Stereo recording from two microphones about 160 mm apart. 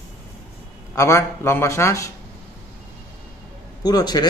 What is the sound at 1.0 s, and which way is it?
A man's voice, 15° left (ahead or behind).